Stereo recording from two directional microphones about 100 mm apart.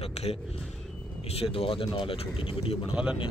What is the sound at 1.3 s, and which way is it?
Speech, 80° left.